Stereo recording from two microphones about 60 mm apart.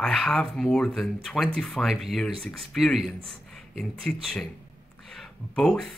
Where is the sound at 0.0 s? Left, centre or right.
Centre.